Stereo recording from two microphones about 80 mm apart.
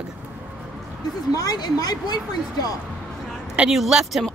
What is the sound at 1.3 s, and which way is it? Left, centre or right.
Speech, left.